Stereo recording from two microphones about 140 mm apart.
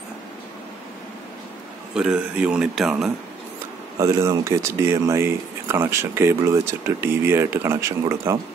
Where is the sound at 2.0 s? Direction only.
5° right (ahead or behind).